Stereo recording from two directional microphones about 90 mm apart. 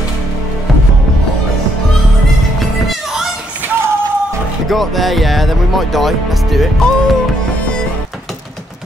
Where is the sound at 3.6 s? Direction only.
25° right (ahead or behind).